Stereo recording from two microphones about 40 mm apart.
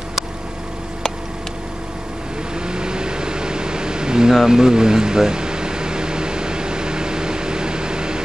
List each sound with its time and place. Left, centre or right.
2.5 s vehicle: right